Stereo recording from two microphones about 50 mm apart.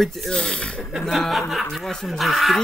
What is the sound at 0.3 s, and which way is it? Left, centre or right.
Speech, centre.